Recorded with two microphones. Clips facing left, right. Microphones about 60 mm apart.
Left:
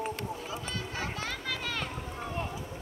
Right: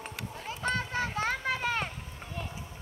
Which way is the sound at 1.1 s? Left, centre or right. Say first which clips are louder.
Right 5 dB; right.